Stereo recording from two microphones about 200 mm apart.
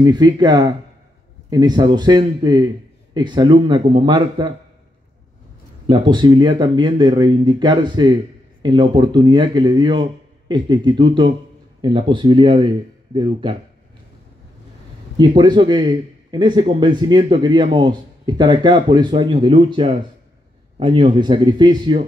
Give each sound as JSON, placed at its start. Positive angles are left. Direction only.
{"t": 0.0, "sound": "speech", "side_deg": -20}
{"t": 5.9, "sound": "speech", "side_deg": -25}
{"t": 15.1, "sound": "speech", "side_deg": -20}